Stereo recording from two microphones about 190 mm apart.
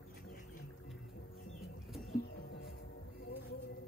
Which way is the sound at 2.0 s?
60° left (ahead or behind).